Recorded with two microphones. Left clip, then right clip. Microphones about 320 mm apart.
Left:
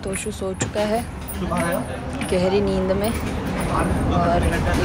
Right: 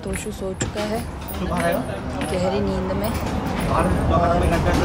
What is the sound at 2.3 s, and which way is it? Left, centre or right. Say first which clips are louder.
Speech: left 4 dB; centre.